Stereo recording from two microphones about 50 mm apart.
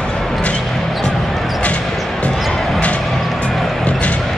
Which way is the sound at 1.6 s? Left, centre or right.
Left.